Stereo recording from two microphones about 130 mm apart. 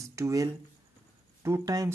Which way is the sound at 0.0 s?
25° right (ahead or behind).